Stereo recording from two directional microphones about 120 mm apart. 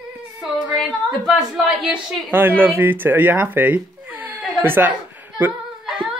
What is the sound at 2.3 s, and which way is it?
Speech, 15° right (ahead or behind).